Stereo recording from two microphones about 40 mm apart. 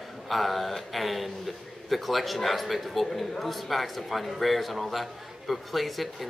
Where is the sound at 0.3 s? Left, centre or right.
Centre.